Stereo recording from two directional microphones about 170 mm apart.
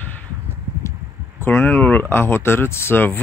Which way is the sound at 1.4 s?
15° left (ahead or behind).